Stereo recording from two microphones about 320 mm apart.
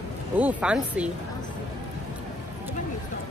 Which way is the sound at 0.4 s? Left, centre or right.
Centre.